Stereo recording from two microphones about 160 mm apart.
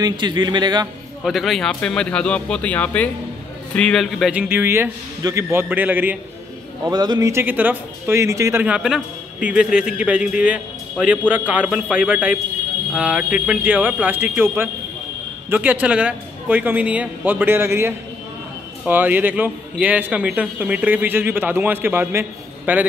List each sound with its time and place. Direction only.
0.0 s speech: 25° right (ahead or behind)
1.2 s a man's voice: centre (ahead or behind)
6.9 s a man's voice: 25° right (ahead or behind); by 22.8 s 10° right (ahead or behind)